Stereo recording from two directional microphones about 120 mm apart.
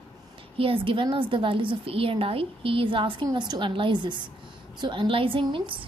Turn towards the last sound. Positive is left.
turn(degrees=-45)  # may be behind; listen again after turning